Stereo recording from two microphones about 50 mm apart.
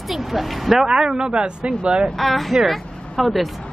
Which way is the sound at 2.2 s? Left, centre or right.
Centre.